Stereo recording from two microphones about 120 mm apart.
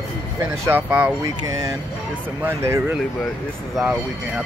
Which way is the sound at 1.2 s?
30° right (ahead or behind).